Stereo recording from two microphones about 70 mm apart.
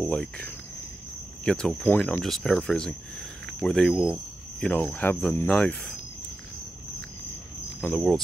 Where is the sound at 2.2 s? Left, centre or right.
Centre.